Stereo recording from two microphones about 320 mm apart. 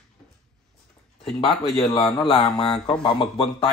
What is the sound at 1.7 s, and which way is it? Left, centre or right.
A man's voice, centre.